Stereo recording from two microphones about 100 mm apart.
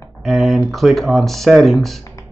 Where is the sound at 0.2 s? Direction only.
Centre (ahead or behind).